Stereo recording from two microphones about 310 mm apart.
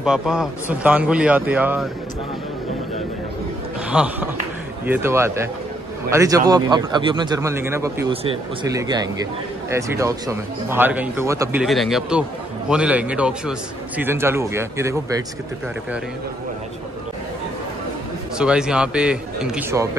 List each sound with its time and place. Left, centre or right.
0.0 s a man's voice: centre
3.9 s a man's voice: centre
18.4 s a man's voice: centre